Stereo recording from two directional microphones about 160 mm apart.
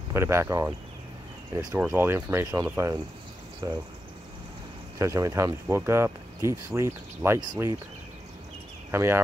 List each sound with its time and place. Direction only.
0.1 s speech: 15° right (ahead or behind)
4.9 s speech: 20° right (ahead or behind)
8.9 s speech: 15° right (ahead or behind)